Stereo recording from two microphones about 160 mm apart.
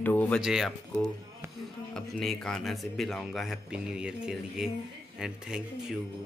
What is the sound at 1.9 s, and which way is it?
Speech, centre (ahead or behind).